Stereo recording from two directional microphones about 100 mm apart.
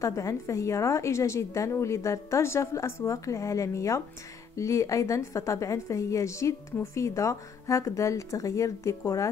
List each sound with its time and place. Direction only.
0.0 s a woman's voice: 30° left (ahead or behind)